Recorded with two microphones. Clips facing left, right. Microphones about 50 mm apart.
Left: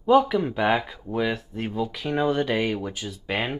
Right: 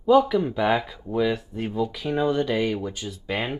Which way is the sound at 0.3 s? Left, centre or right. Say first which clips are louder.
Even; centre.